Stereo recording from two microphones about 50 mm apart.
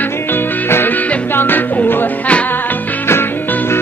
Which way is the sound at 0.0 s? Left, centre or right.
Left.